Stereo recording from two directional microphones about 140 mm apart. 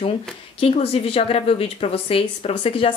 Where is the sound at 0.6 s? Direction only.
45° left (ahead or behind).